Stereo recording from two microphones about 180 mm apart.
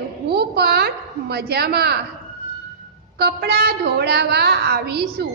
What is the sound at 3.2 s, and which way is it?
A woman's voice, 65° right (ahead or behind).